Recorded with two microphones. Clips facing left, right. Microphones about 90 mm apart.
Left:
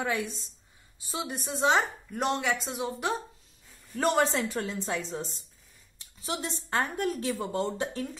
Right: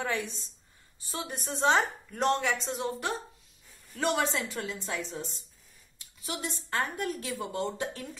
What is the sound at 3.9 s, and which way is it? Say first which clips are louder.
A woman's voice: left 3 dB; 35° left (ahead or behind).